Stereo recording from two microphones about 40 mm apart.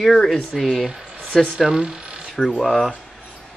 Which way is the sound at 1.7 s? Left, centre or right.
Right.